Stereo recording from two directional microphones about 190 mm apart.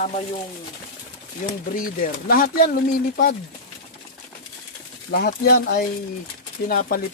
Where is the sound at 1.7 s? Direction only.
50° left (ahead or behind).